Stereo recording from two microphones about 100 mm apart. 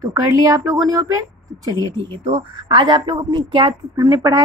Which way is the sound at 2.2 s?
65° right (ahead or behind).